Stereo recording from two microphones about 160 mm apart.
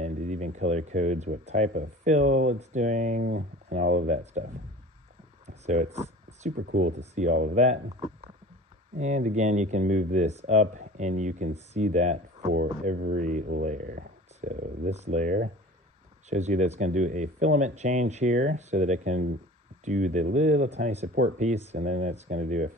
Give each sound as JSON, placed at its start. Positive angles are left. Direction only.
{"t": 0.0, "sound": "a sound", "side_deg": -45}
{"t": 1.8, "sound": "speech", "side_deg": -50}
{"t": 3.3, "sound": "speech", "side_deg": -90}
{"t": 3.7, "sound": "speech", "side_deg": -50}
{"t": 5.5, "sound": "a sound", "side_deg": -45}
{"t": 7.0, "sound": "speech", "side_deg": -50}
{"t": 8.9, "sound": "speech", "side_deg": -50}
{"t": 12.8, "sound": "speech", "side_deg": -60}